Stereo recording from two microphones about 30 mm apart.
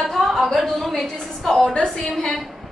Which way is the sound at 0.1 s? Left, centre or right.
Centre.